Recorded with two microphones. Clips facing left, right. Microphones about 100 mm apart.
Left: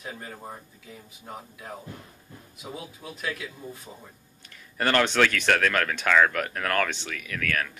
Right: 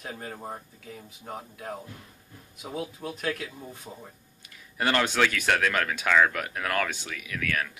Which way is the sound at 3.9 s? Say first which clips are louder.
Right 2 dB; 10° right (ahead or behind).